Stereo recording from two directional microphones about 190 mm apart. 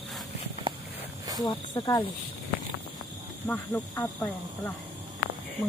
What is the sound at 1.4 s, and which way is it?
Speech, 20° left (ahead or behind).